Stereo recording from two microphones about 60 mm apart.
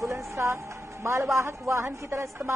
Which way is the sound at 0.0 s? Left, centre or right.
Right.